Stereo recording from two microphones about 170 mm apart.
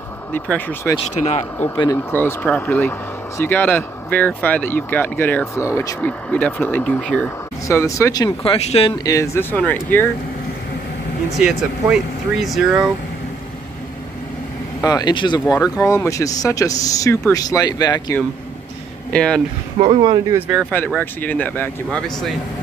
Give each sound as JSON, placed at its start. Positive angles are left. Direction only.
{"t": 0.3, "sound": "speech", "side_deg": 10}
{"t": 1.1, "sound": "speech", "side_deg": 40}
{"t": 2.0, "sound": "speech", "side_deg": 10}
{"t": 7.6, "sound": "speech", "side_deg": 20}
{"t": 8.4, "sound": "speech", "side_deg": 35}
{"t": 8.9, "sound": "speech", "side_deg": 20}
{"t": 11.3, "sound": "speech", "side_deg": 0}
{"t": 14.8, "sound": "speech", "side_deg": 25}
{"t": 19.1, "sound": "speech", "side_deg": 5}
{"t": 19.9, "sound": "speech", "side_deg": -30}
{"t": 20.3, "sound": "speech", "side_deg": -10}
{"t": 20.7, "sound": "speech", "side_deg": 10}